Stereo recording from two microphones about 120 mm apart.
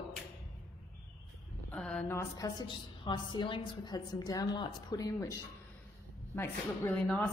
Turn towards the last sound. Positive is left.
turn(degrees=15)  # may be behind; listen again after turning